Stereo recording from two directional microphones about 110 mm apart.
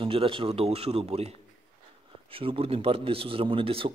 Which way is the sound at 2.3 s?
55° right (ahead or behind).